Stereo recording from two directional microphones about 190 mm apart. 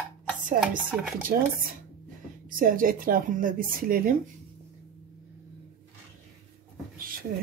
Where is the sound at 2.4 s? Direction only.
45° right (ahead or behind).